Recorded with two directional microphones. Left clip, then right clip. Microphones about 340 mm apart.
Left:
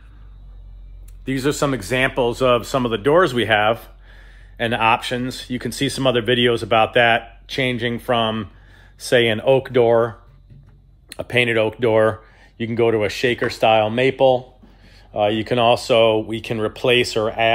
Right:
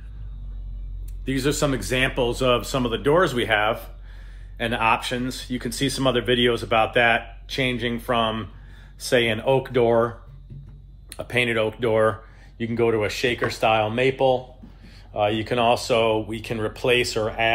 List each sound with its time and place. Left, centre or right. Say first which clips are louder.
1.2 s speech: left 3 dB; left